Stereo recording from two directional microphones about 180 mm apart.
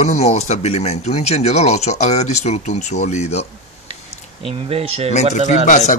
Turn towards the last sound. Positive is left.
turn(degrees=40)  # may be behind; listen again after turning